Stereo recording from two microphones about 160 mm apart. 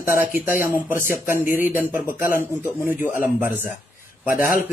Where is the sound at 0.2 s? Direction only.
10° right (ahead or behind).